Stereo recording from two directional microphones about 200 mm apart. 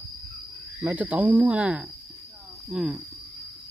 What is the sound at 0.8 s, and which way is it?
Speech, 10° right (ahead or behind).